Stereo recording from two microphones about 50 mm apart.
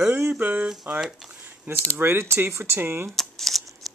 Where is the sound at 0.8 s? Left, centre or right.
Centre.